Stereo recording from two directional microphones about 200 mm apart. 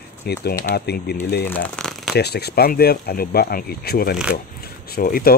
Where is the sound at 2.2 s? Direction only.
55° left (ahead or behind).